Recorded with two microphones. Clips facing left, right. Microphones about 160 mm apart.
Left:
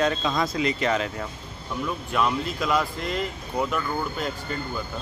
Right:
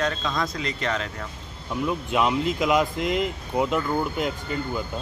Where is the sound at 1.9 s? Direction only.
20° right (ahead or behind).